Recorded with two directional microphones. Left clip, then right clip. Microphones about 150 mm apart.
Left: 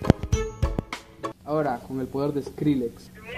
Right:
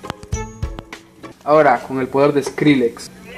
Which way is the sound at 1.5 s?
30° right (ahead or behind).